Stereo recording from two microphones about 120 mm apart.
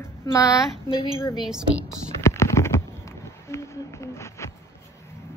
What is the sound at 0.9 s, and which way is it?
Speech, 45° left (ahead or behind).